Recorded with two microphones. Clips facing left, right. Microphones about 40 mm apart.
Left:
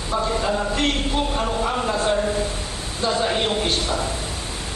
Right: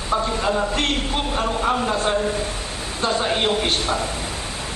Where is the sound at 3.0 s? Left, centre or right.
Right.